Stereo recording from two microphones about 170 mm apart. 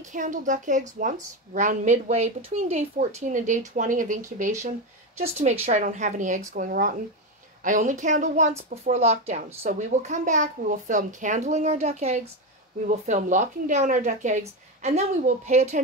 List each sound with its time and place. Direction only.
0.1 s a woman's voice: 50° right (ahead or behind)